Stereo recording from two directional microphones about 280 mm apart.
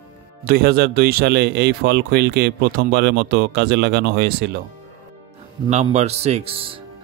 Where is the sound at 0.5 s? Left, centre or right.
Right.